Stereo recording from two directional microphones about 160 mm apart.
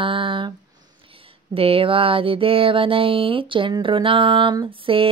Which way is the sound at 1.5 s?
35° right (ahead or behind).